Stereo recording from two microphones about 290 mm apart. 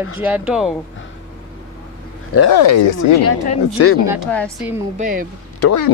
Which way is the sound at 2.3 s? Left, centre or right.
Left.